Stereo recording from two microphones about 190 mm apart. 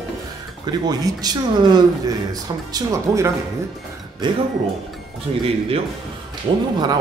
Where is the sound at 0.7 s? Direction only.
20° right (ahead or behind).